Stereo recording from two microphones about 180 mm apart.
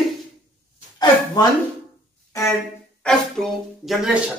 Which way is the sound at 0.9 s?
20° left (ahead or behind).